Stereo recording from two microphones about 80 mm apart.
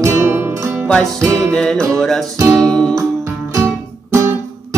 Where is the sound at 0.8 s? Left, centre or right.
Centre.